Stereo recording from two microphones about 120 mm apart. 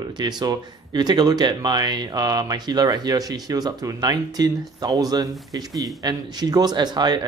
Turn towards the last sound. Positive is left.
turn(degrees=-35)  # may be behind; listen again after turning